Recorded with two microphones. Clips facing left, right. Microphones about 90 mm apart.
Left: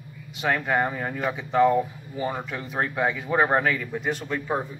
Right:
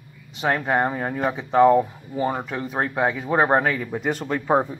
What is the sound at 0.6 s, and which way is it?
Speech, 30° right (ahead or behind).